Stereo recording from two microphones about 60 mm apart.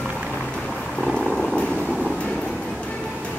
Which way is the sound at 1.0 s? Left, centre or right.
Centre.